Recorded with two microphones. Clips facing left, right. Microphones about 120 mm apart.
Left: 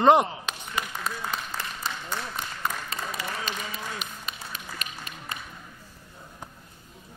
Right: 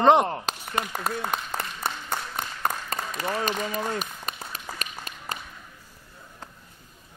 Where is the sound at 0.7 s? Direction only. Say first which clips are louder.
Right 4 dB; 55° right (ahead or behind).